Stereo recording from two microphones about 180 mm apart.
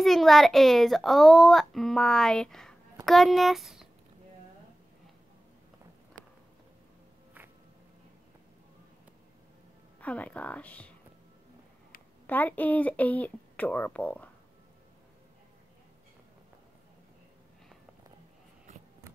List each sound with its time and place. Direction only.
0.0 s a child's voice: centre (ahead or behind)
9.9 s speech: 10° left (ahead or behind)
12.3 s speech: 10° left (ahead or behind)